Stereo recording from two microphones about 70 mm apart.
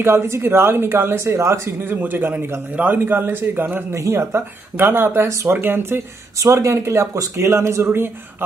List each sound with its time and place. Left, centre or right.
0.0 s speech: right
1.9 s a man's voice: right
3.9 s speech: right
6.4 s speech: right